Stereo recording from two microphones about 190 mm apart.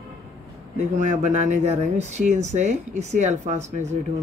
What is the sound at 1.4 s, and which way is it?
Speech, 35° right (ahead or behind).